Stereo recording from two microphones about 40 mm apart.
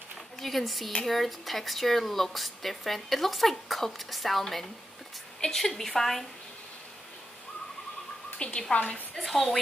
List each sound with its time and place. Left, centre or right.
0.4 s a woman's voice: centre
8.4 s speech: left
8.7 s a woman's voice: left
9.2 s a woman's voice: centre